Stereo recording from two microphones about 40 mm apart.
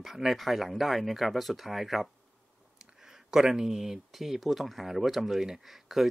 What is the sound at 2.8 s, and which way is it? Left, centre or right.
Speech, centre.